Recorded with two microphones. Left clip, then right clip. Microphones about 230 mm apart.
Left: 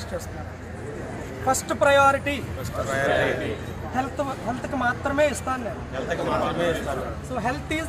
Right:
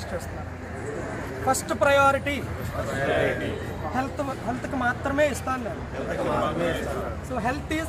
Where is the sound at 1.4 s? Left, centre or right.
Centre.